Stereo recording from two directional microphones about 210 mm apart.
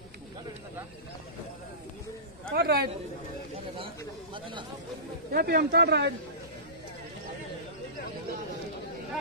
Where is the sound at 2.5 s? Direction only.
45° right (ahead or behind).